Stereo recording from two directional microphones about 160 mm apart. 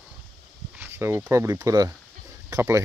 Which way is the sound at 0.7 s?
10° right (ahead or behind).